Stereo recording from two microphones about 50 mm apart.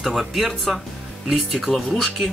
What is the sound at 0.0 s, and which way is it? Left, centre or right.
Speech, centre.